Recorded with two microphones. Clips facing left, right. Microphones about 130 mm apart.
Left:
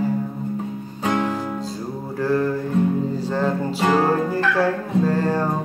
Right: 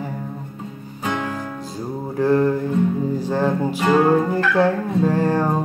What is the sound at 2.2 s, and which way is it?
Music, 20° right (ahead or behind).